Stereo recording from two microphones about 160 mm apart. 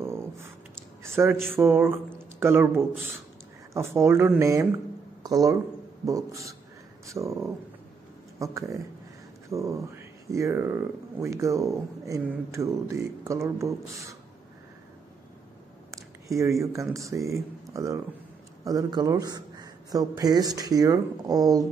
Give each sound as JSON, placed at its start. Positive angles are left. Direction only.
{"t": 1.0, "sound": "speech", "side_deg": -15}
{"t": 15.9, "sound": "a sound", "side_deg": -20}
{"t": 16.9, "sound": "speech", "side_deg": -20}